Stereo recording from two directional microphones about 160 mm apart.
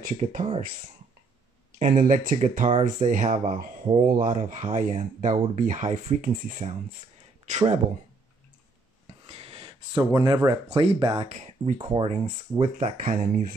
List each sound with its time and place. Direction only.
0.2 s speech: 45° right (ahead or behind)
1.8 s speech: 55° right (ahead or behind)
9.2 s a sound: 35° right (ahead or behind)
10.1 s speech: 25° right (ahead or behind)
11.2 s speech: 45° right (ahead or behind)